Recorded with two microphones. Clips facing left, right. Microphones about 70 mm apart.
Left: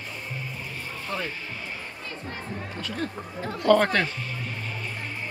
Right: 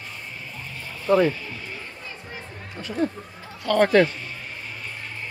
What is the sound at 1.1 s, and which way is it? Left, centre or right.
Speech, right.